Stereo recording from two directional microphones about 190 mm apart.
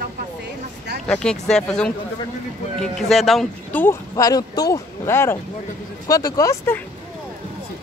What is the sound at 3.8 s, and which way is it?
Speech, 20° left (ahead or behind).